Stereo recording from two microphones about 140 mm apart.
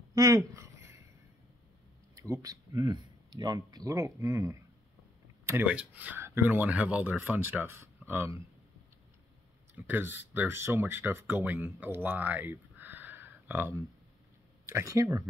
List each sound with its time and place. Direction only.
0.1 s a sound: 25° right (ahead or behind)
2.1 s speech: 20° right (ahead or behind)
9.8 s speech: 15° right (ahead or behind)